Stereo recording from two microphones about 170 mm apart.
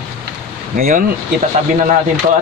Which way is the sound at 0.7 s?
55° right (ahead or behind).